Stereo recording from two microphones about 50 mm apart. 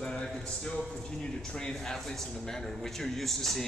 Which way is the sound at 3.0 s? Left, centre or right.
Centre.